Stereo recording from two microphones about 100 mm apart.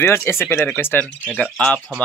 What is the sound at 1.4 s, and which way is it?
Speech, 10° left (ahead or behind).